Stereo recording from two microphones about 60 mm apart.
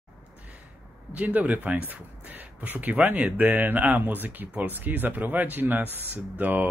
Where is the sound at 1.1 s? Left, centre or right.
Right.